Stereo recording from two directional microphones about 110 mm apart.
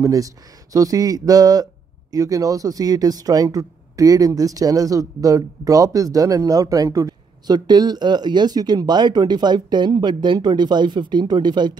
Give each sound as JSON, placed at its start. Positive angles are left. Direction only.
{"t": 0.0, "sound": "speech", "side_deg": -30}